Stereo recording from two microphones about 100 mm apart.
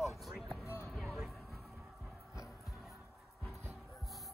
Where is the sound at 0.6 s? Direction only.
25° left (ahead or behind).